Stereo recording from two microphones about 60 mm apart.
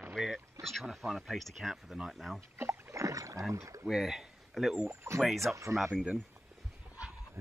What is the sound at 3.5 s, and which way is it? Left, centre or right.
Speech, right.